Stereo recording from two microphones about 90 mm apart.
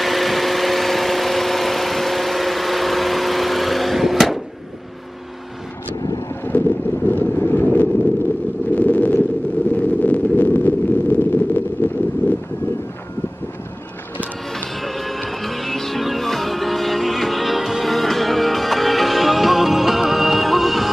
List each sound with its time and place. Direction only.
0.0 s vehicle: centre (ahead or behind)
5.9 s vehicle: 45° left (ahead or behind)
6.5 s vehicle: 20° left (ahead or behind)
8.7 s a sound: 15° left (ahead or behind)
12.2 s wind: 20° left (ahead or behind)
14.5 s music: 5° left (ahead or behind)